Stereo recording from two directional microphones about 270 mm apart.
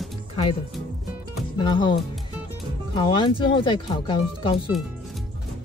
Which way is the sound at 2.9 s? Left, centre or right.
Centre.